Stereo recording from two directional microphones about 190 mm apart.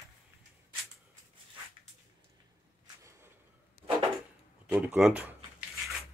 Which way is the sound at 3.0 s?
15° right (ahead or behind).